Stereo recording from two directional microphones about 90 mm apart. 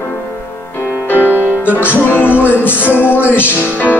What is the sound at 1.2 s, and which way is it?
Music, 20° right (ahead or behind).